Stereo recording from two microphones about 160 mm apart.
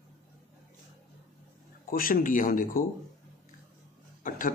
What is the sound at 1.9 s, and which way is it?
Speech, 60° left (ahead or behind).